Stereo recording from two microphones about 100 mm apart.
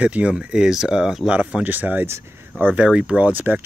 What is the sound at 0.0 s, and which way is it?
Speech, 10° right (ahead or behind).